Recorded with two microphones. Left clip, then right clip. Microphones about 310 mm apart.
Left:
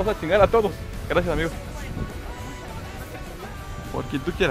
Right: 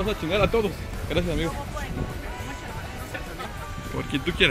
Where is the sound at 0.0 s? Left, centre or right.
Left.